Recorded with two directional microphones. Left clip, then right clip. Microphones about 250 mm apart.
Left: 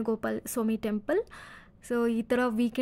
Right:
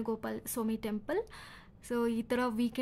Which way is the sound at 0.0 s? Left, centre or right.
Centre.